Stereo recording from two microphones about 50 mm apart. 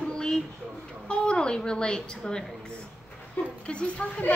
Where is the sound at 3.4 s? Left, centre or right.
Left.